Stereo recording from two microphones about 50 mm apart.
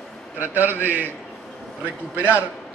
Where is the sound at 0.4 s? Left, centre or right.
Right.